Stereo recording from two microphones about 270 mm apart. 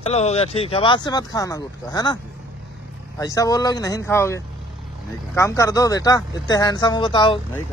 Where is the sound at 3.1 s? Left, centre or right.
Centre.